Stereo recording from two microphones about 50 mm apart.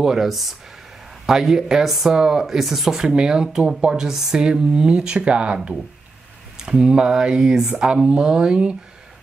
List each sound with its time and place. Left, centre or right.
0.0 s speech: centre